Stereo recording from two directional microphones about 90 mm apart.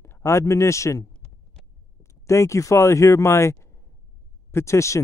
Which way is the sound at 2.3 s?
35° left (ahead or behind).